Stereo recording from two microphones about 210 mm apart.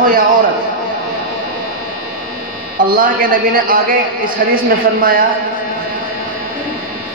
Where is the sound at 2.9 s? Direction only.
45° right (ahead or behind).